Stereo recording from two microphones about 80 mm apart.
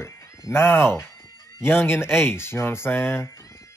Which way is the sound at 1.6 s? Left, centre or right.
Left.